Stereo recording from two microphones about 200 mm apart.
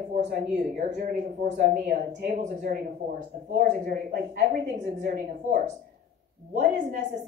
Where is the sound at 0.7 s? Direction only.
35° right (ahead or behind).